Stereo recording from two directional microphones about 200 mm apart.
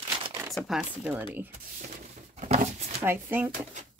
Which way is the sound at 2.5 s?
30° right (ahead or behind).